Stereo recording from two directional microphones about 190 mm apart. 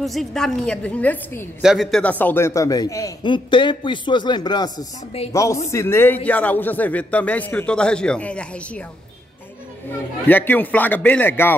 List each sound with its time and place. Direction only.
0.0 s a woman's voice: centre (ahead or behind)
10.2 s a man's voice: 10° left (ahead or behind)